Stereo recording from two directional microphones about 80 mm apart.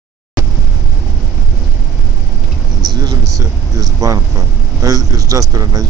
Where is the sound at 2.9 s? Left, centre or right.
Right.